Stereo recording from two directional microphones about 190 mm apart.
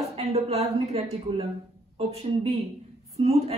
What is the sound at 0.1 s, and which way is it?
A woman's voice, 30° right (ahead or behind).